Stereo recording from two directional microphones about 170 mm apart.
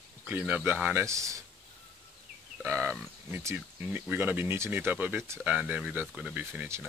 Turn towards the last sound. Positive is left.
turn(degrees=-10)  # may be behind; listen again after turning